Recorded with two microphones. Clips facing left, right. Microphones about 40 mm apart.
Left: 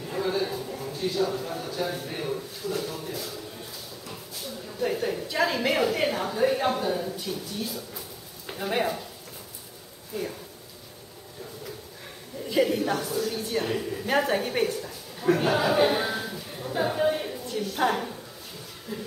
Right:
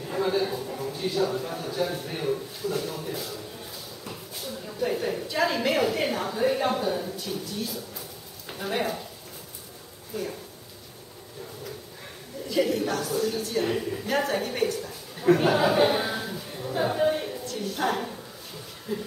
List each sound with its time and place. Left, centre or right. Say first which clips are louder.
0.0 s a sound: right 2 dB; centre
2.0 s a woman's voice: right 2 dB; centre
4.7 s a woman's voice: even; centre
12.4 s a woman's voice: left 1 dB; centre
13.6 s a woman's voice: right 2 dB; centre
14.0 s a woman's voice: left 3 dB; centre
14.8 s a sound: even; centre
17.6 s a woman's voice: left 2 dB; centre
18.9 s speech: right 4 dB; centre